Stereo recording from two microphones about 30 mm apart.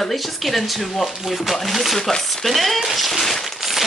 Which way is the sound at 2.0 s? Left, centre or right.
Centre.